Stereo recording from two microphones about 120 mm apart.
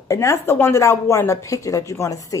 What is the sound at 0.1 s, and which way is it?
Speech, 25° left (ahead or behind).